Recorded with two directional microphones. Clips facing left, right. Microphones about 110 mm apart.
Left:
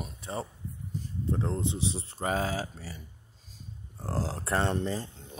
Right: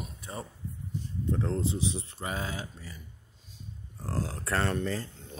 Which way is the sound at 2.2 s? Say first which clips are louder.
Left 5 dB; 40° left (ahead or behind).